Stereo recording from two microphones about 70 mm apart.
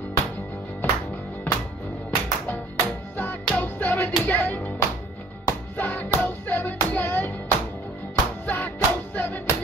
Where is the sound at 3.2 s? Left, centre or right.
Left.